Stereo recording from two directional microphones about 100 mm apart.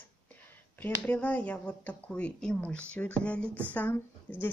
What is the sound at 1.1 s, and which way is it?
Speech, 15° left (ahead or behind).